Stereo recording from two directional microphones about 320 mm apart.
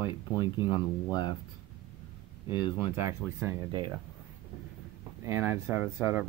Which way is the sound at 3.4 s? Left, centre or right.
Centre.